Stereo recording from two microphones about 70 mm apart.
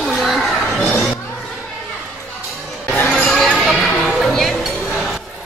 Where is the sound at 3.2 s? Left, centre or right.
Centre.